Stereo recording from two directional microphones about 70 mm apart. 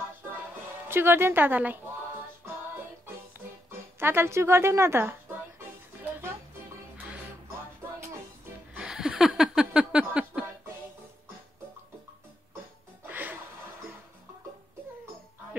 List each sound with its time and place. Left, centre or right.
0.8 s a woman's voice: right
4.0 s a woman's voice: right
8.7 s a sound: centre
13.0 s music: right